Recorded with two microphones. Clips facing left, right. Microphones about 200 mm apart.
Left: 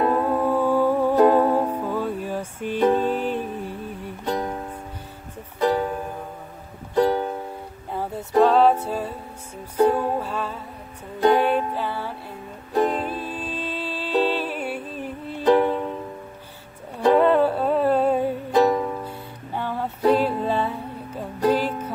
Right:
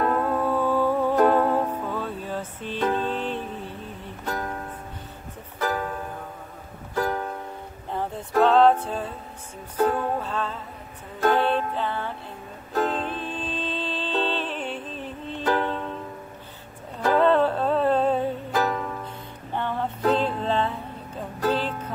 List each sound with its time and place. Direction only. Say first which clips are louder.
0.0 s music: left 3 dB; 15° left (ahead or behind)
7.1 s music: left 6 dB; 25° left (ahead or behind)
7.9 s music: left 1 dB; 10° left (ahead or behind)
8.4 s a capella: left 1 dB; 10° left (ahead or behind)
9.8 s music: left 4 dB; 10° left (ahead or behind)
17.0 s music: left 3 dB; 10° left (ahead or behind)